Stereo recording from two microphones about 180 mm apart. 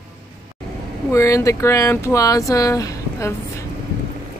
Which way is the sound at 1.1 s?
15° left (ahead or behind).